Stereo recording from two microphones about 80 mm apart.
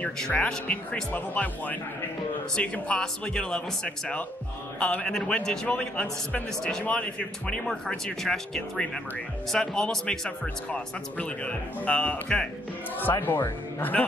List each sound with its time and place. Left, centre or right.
0.0 s speech: centre
13.1 s speech: left
13.7 s speech: left